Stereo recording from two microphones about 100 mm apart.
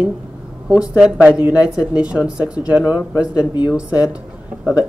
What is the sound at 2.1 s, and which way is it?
A woman's voice, 10° right (ahead or behind).